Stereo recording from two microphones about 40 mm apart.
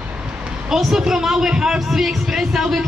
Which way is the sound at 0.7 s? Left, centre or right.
Centre.